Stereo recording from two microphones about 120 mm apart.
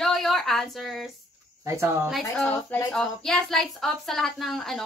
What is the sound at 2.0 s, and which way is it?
Speech, centre (ahead or behind).